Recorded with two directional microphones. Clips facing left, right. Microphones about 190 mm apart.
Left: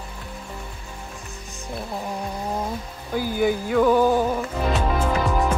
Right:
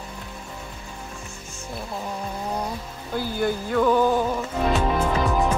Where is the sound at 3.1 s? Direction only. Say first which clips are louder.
Left 3 dB; 10° left (ahead or behind).